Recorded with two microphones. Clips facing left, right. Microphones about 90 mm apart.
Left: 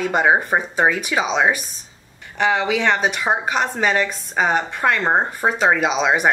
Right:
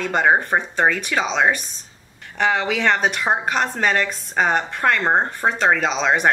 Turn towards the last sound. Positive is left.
turn(degrees=5)  # may be behind; listen again after turning